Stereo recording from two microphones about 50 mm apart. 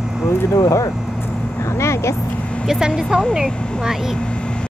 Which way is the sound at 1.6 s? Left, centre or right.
Left.